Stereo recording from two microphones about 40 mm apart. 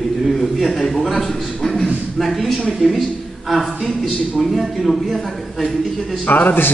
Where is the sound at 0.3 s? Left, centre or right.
Centre.